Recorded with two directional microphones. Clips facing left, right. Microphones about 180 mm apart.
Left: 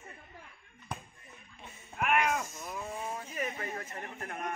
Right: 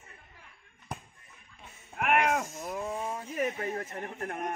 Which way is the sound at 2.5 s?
55° right (ahead or behind).